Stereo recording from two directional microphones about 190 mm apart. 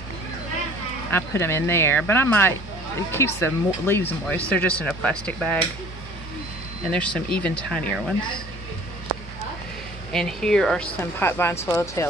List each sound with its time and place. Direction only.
1.1 s speech: 15° left (ahead or behind)
6.9 s speech: 5° left (ahead or behind)
10.1 s speech: 5° left (ahead or behind)